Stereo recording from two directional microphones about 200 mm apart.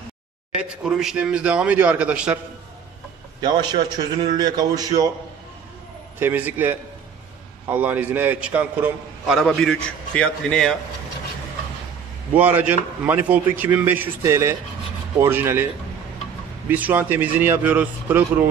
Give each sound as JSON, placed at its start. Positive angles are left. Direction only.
{"t": 0.6, "sound": "a man's voice", "side_deg": -5}
{"t": 3.3, "sound": "a man's voice", "side_deg": -20}
{"t": 6.1, "sound": "a man's voice", "side_deg": -10}
{"t": 12.4, "sound": "a man's voice", "side_deg": -10}